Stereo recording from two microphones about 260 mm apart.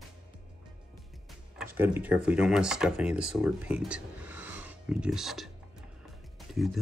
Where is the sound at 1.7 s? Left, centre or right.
Centre.